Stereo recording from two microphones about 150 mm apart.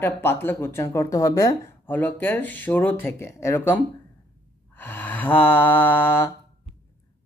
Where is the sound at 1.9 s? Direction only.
10° left (ahead or behind).